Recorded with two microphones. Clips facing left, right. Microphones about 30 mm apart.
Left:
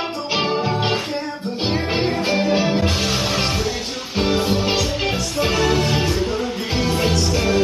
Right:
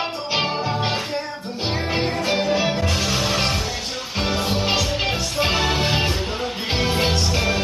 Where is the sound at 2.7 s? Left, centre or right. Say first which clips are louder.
Left 3 dB; centre.